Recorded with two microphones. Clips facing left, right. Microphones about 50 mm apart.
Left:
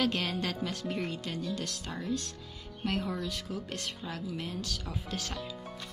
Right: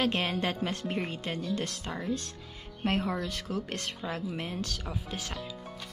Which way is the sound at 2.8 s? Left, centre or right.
Right.